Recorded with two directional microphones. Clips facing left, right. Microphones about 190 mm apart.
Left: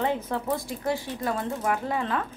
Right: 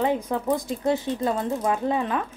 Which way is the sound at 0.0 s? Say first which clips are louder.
Right 3 dB; 15° right (ahead or behind).